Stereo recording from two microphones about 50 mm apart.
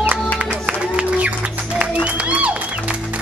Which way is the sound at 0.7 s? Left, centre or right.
Right.